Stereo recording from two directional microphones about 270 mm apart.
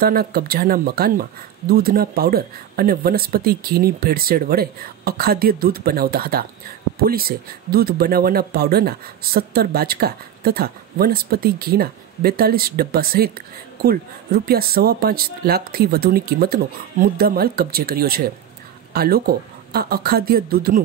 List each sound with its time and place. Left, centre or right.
0.0 s speech: right